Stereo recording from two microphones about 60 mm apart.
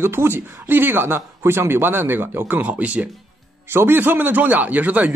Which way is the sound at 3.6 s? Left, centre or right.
Right.